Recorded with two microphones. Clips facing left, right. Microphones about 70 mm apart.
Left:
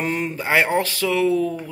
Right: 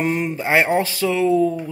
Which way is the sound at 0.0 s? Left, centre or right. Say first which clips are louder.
Right 3 dB; centre.